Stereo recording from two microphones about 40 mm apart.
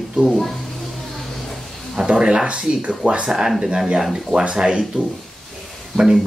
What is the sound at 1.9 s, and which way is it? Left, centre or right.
Speech, centre.